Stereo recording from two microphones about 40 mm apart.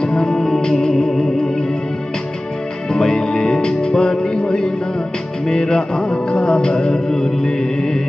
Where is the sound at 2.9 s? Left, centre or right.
Centre.